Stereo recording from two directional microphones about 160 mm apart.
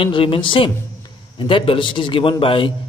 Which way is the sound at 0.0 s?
35° left (ahead or behind).